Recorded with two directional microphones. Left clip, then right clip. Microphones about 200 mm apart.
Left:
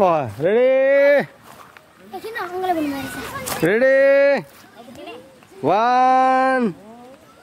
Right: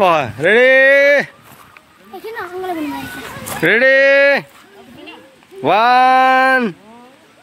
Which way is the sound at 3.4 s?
5° right (ahead or behind).